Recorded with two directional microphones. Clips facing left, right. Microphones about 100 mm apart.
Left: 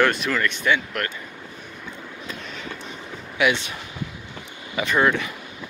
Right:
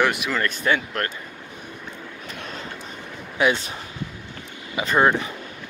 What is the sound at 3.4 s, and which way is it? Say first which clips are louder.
Speech: right 1 dB; 35° right (ahead or behind).